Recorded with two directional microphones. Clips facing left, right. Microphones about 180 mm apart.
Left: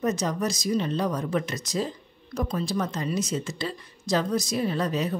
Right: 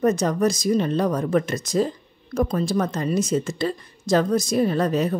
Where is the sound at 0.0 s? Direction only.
55° right (ahead or behind).